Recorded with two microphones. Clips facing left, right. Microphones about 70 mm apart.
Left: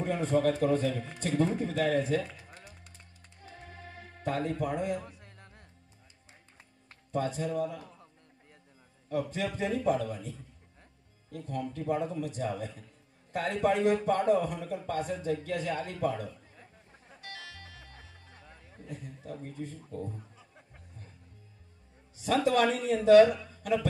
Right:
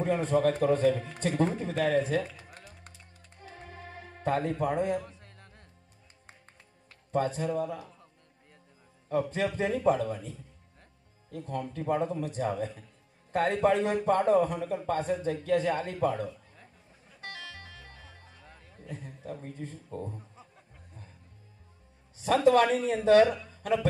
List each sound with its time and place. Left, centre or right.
0.0 s speech: right
3.3 s music: right
5.0 s a sound: left
7.1 s speech: right
9.1 s speech: right
17.2 s music: right
18.9 s speech: right
22.2 s speech: right
23.5 s music: right